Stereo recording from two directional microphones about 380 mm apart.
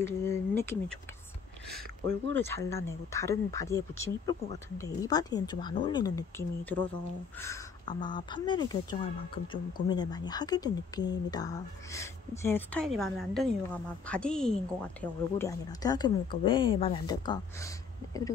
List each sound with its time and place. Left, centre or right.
0.0 s speech: centre
1.8 s speech: right
2.4 s speech: centre